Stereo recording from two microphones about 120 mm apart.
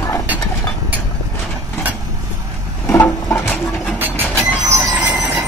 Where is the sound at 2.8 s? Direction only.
15° left (ahead or behind).